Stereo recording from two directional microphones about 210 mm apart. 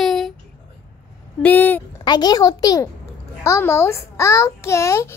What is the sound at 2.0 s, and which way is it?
A child's voice, 20° left (ahead or behind).